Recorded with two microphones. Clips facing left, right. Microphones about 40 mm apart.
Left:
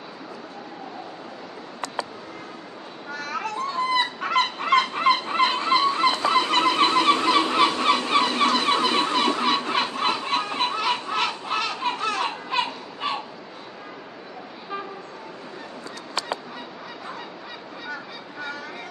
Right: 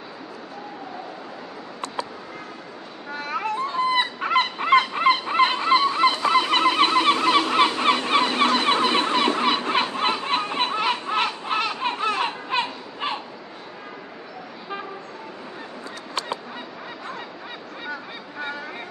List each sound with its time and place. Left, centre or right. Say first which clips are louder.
3.2 s fowl: right 3 dB; right